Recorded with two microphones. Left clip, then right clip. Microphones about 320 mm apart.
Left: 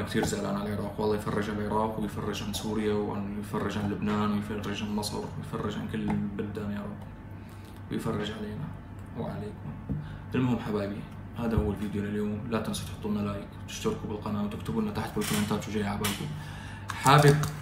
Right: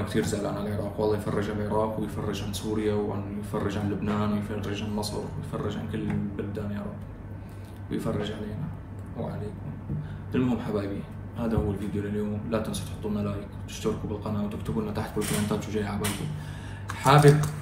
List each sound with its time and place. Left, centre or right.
0.0 s speech: centre
7.9 s speech: centre
10.3 s speech: centre
16.8 s a sound: centre